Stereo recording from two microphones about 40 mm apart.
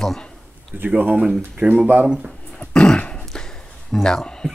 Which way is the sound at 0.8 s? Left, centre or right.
Right.